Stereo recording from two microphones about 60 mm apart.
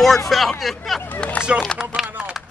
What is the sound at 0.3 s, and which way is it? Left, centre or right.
Speech, centre.